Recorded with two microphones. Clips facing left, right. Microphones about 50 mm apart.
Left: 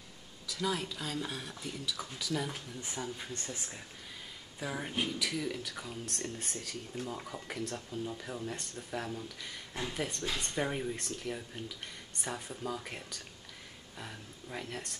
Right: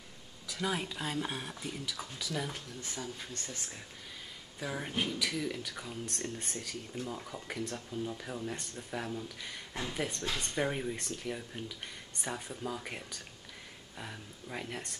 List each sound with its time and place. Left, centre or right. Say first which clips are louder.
0.5 s speech: even; centre
2.0 s speech: left 4 dB; centre
2.8 s speech: left 3 dB; centre
4.6 s speech: even; centre